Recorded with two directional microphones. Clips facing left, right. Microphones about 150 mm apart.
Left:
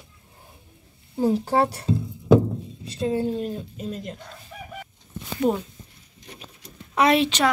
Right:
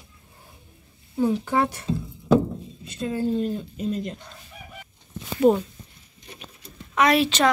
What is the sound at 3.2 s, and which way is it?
Speech, 5° left (ahead or behind).